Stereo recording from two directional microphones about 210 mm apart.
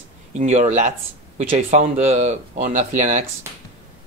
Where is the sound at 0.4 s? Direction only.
35° right (ahead or behind).